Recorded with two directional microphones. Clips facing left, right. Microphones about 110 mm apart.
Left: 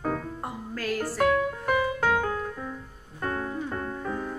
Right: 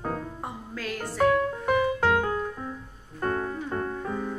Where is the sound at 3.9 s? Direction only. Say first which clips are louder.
Right 1 dB; 10° right (ahead or behind).